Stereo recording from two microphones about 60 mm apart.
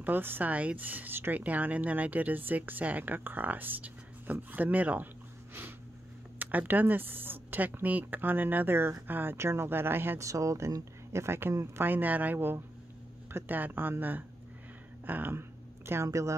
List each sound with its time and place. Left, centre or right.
0.0 s a woman's voice: right
0.5 s a woman's voice: right
5.5 s a sound: right
6.4 s a woman's voice: right
10.1 s speech: right
11.5 s speech: right
11.8 s a woman's voice: right
16.1 s speech: right